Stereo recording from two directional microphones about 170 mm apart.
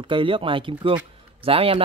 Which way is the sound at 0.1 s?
30° right (ahead or behind).